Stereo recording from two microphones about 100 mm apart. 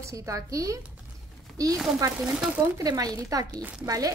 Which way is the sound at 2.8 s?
40° right (ahead or behind).